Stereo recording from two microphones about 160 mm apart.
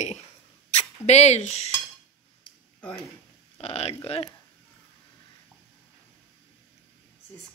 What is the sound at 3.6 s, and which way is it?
Speech, 40° left (ahead or behind).